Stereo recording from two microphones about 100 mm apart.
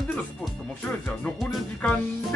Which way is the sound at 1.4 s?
Centre (ahead or behind).